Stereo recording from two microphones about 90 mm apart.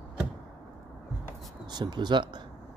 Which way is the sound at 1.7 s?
55° right (ahead or behind).